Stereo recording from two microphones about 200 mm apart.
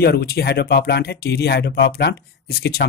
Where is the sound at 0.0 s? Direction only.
50° left (ahead or behind).